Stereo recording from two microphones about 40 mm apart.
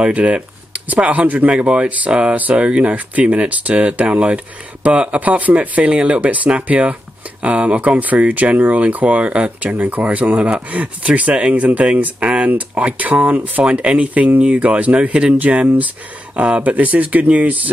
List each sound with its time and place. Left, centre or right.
0.1 s speech: right
1.6 s speech: right
9.8 s speech: right